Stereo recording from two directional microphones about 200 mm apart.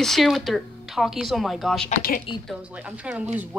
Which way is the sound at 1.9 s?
45° left (ahead or behind).